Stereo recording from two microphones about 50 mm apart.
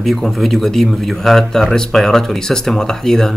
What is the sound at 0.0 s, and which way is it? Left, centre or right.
Speech, centre.